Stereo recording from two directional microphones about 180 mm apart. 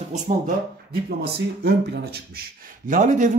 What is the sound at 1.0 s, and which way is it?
Speech, 60° right (ahead or behind).